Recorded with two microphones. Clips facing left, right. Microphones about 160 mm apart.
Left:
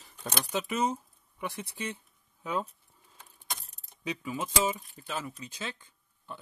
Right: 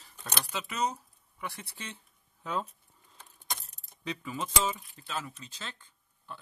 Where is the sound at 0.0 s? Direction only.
15° left (ahead or behind).